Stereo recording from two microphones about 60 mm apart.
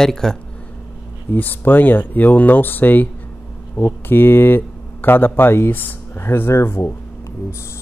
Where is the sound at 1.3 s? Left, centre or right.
Left.